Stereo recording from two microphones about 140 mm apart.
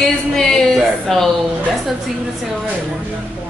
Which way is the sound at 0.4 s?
Centre (ahead or behind).